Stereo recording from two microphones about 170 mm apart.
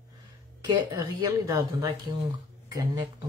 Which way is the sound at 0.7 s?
20° right (ahead or behind).